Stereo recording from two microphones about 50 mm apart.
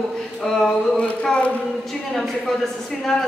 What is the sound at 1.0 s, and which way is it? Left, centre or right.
Speech, left.